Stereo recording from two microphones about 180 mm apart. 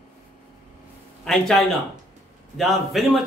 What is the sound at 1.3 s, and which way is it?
Speech, 5° left (ahead or behind).